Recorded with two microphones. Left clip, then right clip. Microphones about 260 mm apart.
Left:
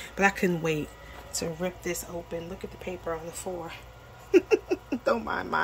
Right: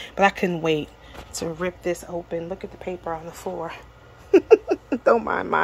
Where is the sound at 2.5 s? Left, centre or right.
Centre.